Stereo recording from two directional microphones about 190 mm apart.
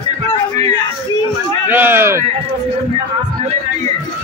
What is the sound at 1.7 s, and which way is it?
Speech, 10° right (ahead or behind).